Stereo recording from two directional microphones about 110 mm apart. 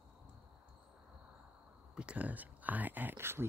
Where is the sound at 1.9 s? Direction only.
10° right (ahead or behind).